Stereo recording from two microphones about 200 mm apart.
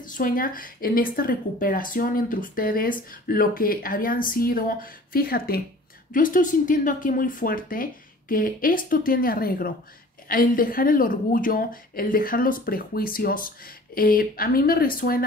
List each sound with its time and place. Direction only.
0.0 s speech: 45° left (ahead or behind)